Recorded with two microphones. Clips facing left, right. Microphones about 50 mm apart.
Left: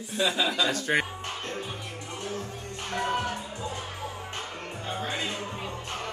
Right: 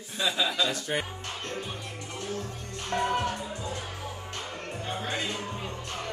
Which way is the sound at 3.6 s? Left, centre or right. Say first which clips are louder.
Left 1 dB; left.